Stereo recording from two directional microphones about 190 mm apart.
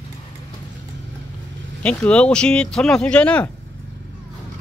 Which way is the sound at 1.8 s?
5° left (ahead or behind).